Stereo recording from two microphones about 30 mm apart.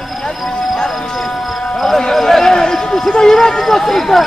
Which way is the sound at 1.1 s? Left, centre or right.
Centre.